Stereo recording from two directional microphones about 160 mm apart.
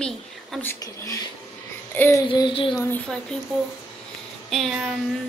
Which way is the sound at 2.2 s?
30° left (ahead or behind).